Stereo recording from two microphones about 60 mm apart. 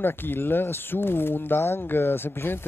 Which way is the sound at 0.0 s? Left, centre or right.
Left.